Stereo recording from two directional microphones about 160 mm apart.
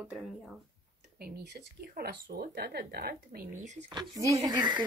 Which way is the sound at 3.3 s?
50° right (ahead or behind).